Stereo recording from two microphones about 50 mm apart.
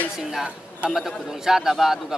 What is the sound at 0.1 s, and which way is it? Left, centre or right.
Speech, centre.